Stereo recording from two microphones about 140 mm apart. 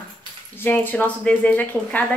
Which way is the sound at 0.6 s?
15° left (ahead or behind).